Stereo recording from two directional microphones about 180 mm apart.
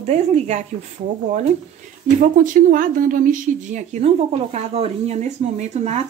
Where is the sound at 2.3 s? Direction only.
50° right (ahead or behind).